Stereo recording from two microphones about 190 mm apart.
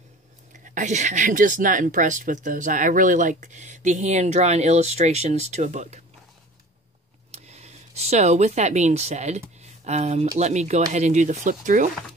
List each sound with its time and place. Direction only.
0.5 s speech: 40° right (ahead or behind)
7.3 s speech: 35° right (ahead or behind)
9.6 s a sound: 35° right (ahead or behind)
10.4 s speech: 35° right (ahead or behind)